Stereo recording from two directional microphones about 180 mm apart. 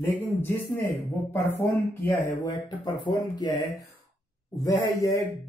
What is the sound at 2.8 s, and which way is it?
Speech, 25° left (ahead or behind).